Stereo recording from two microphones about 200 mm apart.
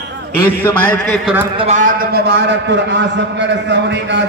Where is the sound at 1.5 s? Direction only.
30° right (ahead or behind); by 4.2 s 60° right (ahead or behind).